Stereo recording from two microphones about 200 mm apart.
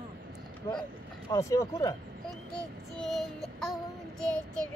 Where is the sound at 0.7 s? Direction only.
20° left (ahead or behind).